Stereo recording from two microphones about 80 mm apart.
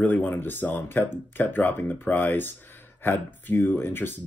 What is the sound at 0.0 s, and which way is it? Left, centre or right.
Speech, left.